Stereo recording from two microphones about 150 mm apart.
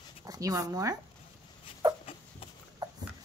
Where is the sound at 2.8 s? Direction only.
25° right (ahead or behind).